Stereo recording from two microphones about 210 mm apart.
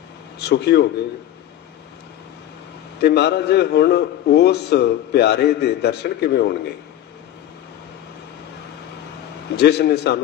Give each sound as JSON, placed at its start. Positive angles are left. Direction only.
{"t": 0.5, "sound": "a man's voice", "side_deg": 50}
{"t": 3.0, "sound": "a man's voice", "side_deg": 50}
{"t": 9.6, "sound": "a man's voice", "side_deg": 50}